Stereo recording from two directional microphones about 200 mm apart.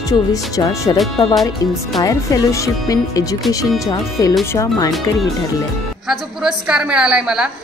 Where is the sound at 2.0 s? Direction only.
15° left (ahead or behind).